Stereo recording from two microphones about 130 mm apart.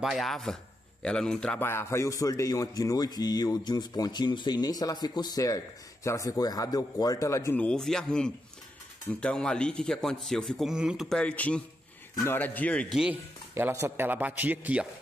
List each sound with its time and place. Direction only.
0.0 s a man's voice: centre (ahead or behind)
1.6 s speech: 20° left (ahead or behind)
7.5 s a man's voice: 5° left (ahead or behind)
12.9 s a man's voice: 5° right (ahead or behind)
13.6 s a man's voice: 15° right (ahead or behind)